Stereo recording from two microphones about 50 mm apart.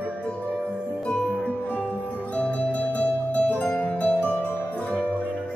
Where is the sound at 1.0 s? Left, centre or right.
Centre.